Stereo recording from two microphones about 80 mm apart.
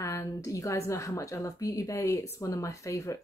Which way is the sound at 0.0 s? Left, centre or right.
Left.